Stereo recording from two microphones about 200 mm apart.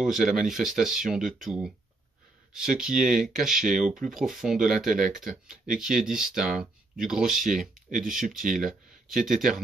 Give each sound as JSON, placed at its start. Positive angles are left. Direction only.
{"t": 0.0, "sound": "speech", "side_deg": 0}
{"t": 3.6, "sound": "speech", "side_deg": -40}
{"t": 4.0, "sound": "speech", "side_deg": 0}
{"t": 4.8, "sound": "speech", "side_deg": -40}
{"t": 5.8, "sound": "speech", "side_deg": 0}